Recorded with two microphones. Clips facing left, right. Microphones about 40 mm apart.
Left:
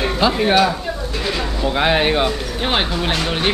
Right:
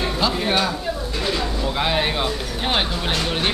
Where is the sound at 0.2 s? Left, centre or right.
Centre.